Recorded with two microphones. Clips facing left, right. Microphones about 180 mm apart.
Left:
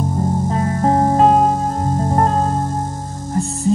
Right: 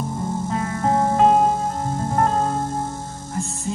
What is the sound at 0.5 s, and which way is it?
Music, 35° left (ahead or behind).